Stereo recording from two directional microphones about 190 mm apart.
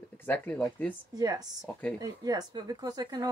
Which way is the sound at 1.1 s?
20° right (ahead or behind).